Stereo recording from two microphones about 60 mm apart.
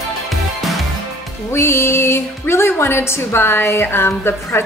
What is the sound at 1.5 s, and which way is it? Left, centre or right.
A woman's voice, left.